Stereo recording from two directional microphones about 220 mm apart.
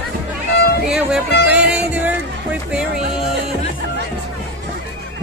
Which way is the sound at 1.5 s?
5° right (ahead or behind).